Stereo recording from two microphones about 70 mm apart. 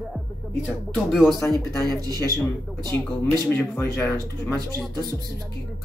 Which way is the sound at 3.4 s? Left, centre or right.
Left.